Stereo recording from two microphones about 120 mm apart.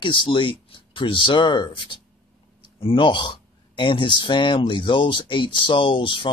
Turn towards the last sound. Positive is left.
turn(degrees=45)  # may be behind; listen again after turning